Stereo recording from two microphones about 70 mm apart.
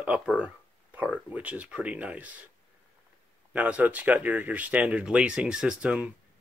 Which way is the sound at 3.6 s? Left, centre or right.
Centre.